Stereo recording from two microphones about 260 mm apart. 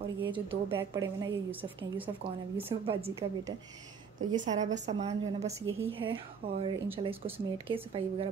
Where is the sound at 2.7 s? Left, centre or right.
Centre.